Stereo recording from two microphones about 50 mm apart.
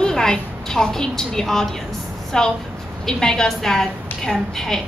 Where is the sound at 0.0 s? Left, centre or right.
Centre.